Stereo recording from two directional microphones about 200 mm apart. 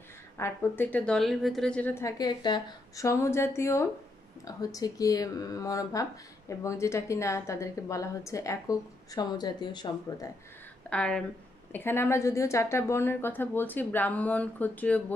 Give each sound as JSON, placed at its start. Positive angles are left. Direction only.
{"t": 0.4, "sound": "a woman's voice", "side_deg": 10}
{"t": 10.9, "sound": "a woman's voice", "side_deg": 5}